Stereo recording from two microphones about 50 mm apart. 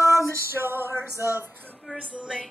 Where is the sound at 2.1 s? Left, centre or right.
Right.